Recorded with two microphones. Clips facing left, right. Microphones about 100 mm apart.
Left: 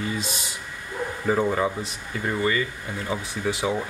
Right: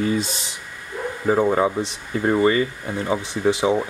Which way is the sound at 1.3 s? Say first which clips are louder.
Right 5 dB; 25° right (ahead or behind).